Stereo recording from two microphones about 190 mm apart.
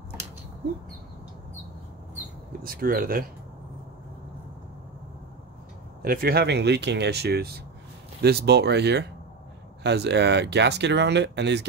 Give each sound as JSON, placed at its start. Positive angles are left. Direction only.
{"t": 2.6, "sound": "speech", "side_deg": -50}
{"t": 6.0, "sound": "speech", "side_deg": -55}